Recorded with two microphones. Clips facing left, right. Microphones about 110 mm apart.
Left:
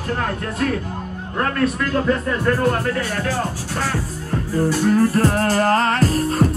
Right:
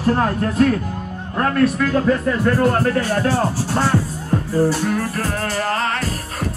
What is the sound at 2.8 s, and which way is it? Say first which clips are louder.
Speech: right 4 dB; 35° right (ahead or behind).